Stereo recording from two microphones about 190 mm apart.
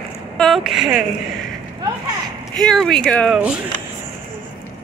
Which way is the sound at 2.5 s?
Centre (ahead or behind).